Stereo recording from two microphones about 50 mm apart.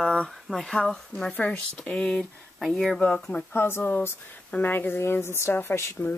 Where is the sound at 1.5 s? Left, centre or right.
Left.